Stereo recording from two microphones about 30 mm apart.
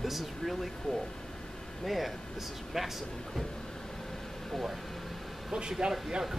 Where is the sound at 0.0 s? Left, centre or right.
Centre.